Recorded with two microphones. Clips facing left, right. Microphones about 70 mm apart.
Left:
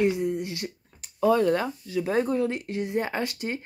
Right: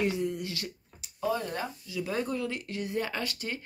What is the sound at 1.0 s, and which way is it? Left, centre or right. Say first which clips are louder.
Speech: left 10 dB; left.